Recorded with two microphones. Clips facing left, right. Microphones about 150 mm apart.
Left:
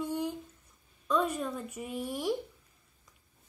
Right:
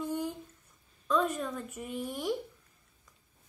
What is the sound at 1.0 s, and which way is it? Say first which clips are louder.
A woman's voice: even; 5° left (ahead or behind).